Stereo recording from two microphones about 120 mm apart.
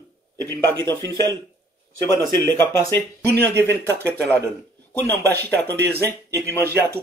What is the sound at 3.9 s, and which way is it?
Speech, 20° right (ahead or behind).